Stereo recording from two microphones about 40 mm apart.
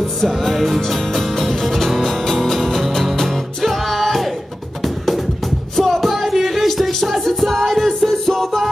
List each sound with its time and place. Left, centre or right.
0.0 s music: centre